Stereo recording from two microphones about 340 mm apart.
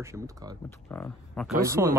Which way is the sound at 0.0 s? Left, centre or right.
Centre.